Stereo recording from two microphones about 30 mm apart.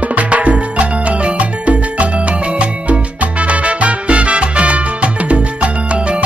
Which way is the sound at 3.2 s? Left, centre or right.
Right.